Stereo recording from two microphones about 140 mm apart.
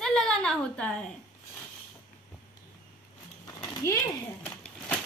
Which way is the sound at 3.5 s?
25° left (ahead or behind).